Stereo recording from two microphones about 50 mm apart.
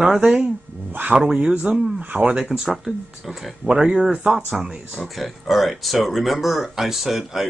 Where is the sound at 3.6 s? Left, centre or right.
Centre.